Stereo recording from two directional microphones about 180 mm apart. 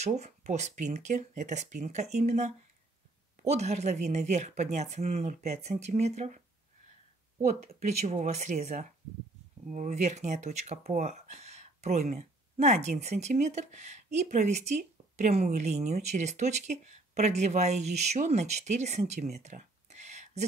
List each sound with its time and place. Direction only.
0.0 s speech: 40° right (ahead or behind)
8.1 s speech: 40° right (ahead or behind)
19.3 s a sound: 40° right (ahead or behind)